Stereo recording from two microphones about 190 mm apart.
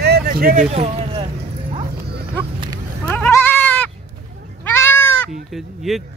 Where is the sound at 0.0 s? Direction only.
55° right (ahead or behind).